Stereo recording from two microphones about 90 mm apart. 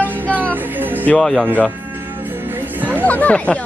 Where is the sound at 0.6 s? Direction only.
20° right (ahead or behind).